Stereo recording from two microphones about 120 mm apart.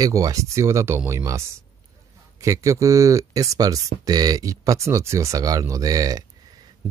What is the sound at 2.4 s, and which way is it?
Speech, 25° right (ahead or behind).